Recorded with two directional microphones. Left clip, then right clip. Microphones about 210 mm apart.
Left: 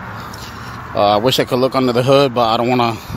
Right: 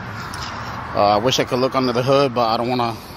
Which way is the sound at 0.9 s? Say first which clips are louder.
Left 3 dB; 15° left (ahead or behind).